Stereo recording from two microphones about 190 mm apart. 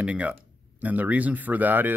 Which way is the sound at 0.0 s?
5° right (ahead or behind).